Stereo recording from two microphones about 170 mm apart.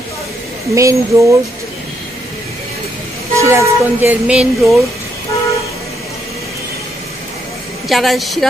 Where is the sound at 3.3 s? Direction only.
15° right (ahead or behind); by 4.8 s centre (ahead or behind).